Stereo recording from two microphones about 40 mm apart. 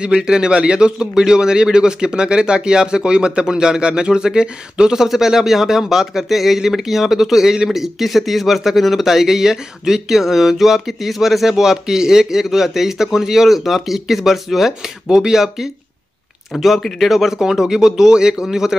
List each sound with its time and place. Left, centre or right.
0.0 s a man's voice: right
4.9 s speech: centre
15.0 s speech: centre